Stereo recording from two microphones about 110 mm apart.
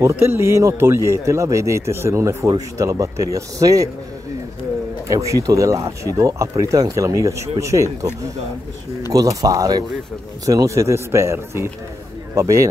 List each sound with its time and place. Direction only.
0.1 s speech: 20° right (ahead or behind)
5.0 s speech: 30° right (ahead or behind)